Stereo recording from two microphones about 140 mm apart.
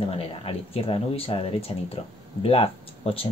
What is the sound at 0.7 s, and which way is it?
Speech, 40° left (ahead or behind).